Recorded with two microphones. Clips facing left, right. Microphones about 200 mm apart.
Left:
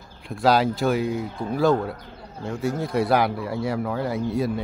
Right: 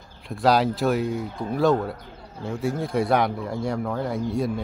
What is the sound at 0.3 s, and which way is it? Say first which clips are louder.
Speech: even; centre (ahead or behind).